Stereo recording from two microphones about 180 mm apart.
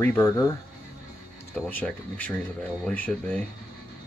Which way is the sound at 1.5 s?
10° left (ahead or behind).